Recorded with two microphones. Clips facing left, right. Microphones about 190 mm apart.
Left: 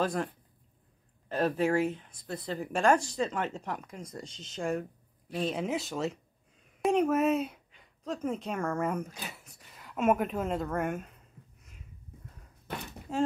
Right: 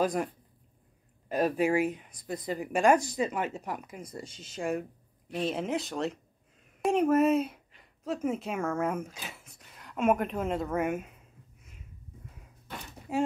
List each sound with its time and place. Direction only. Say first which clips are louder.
0.0 s speech: right 2 dB; 15° right (ahead or behind)
1.3 s speech: right 1 dB; 10° right (ahead or behind)
13.1 s speech: right 1 dB; 15° right (ahead or behind)